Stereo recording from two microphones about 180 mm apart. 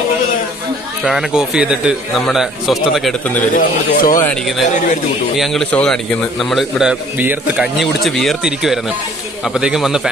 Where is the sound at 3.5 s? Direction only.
50° left (ahead or behind).